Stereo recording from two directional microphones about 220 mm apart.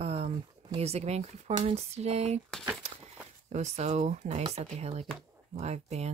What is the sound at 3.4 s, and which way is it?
Speech, 30° right (ahead or behind).